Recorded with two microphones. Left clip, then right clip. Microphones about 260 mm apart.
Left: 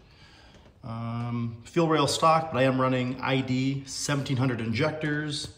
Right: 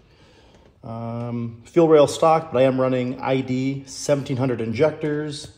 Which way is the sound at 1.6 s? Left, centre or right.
Centre.